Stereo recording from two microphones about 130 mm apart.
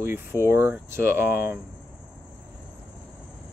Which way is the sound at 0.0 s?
20° right (ahead or behind).